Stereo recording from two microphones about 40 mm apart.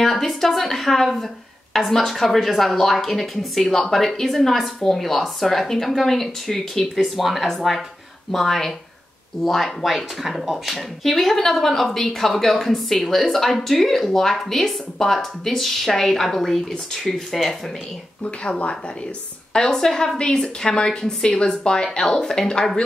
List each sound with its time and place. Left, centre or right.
0.0 s a woman's voice: centre
18.2 s a woman's voice: left